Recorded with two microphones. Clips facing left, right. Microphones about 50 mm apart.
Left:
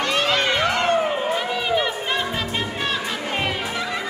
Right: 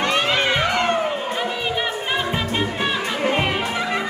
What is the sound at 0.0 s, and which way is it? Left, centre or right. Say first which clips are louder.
Music: right 1 dB; right.